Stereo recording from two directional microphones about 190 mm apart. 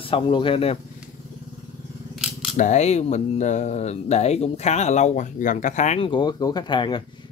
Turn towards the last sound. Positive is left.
turn(degrees=25)  # may be behind; listen again after turning